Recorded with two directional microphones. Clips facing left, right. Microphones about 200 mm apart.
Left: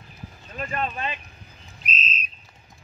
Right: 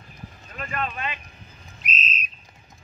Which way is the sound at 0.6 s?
30° left (ahead or behind).